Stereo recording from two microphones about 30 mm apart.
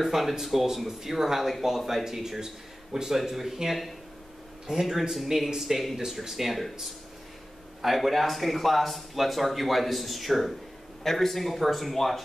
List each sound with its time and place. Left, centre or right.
0.0 s speech: centre
4.6 s speech: centre
7.8 s speech: centre